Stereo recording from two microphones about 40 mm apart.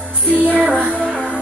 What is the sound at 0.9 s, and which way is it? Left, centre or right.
Music, left.